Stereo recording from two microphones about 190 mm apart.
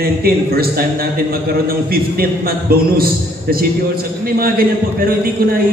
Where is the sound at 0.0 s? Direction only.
55° right (ahead or behind).